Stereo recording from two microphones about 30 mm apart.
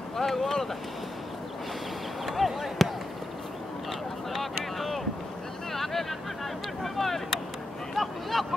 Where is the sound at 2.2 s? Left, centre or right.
Centre.